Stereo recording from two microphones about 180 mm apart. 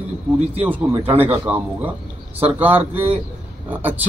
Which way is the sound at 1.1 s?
10° right (ahead or behind).